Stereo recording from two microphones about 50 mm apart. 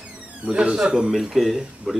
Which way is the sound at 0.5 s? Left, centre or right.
Centre.